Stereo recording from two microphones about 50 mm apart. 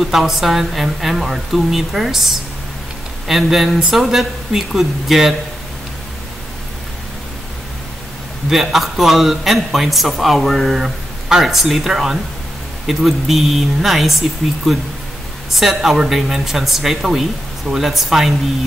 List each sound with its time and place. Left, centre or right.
0.0 s speech: centre
3.3 s speech: centre
8.5 s a man's voice: centre
10.8 s a man's voice: centre